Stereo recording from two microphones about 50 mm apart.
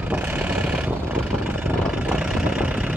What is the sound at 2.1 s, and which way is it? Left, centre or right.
Vehicle, right.